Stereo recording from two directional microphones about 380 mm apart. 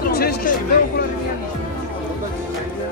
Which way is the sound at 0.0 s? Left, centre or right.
Left.